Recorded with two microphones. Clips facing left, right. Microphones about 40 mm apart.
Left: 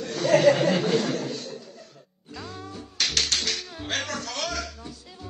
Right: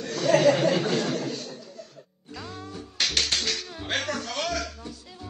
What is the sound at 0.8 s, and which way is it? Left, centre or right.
Chuckle, left.